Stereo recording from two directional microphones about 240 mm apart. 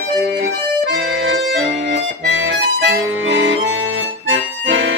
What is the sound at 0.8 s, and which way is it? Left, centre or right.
Accordion, right.